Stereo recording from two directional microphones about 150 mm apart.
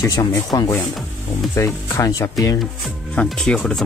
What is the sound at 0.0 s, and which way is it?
Speech, 20° left (ahead or behind).